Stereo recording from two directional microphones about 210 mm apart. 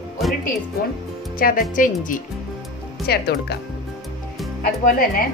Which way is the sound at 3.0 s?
50° left (ahead or behind).